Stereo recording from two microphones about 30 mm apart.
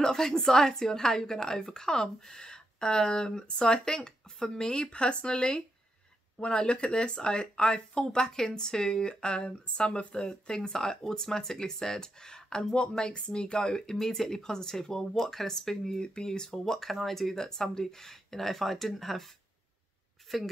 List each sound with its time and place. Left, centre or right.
0.0 s a woman's voice: centre; by 10.0 s left
10.5 s a woman's voice: centre
16.0 s a woman's voice: left
16.5 s speech: centre
20.3 s speech: centre